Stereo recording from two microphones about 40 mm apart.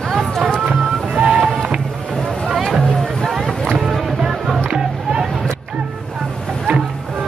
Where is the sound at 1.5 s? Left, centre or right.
Right.